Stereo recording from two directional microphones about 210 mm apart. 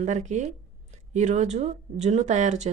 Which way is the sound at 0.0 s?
35° right (ahead or behind).